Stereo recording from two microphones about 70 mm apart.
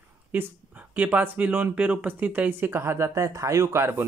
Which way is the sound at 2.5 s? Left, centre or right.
Right.